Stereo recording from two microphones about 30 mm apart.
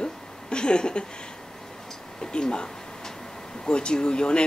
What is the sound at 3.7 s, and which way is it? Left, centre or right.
Speech, left.